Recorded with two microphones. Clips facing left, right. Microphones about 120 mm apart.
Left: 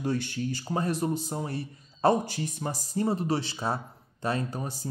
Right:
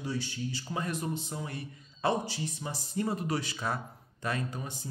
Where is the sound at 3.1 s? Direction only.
30° left (ahead or behind).